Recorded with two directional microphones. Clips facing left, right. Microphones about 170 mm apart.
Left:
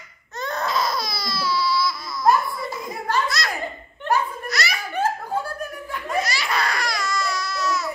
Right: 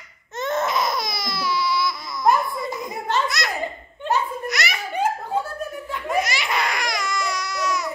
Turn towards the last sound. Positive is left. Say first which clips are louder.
# even
turn(degrees=-15)  # may be behind; listen again after turning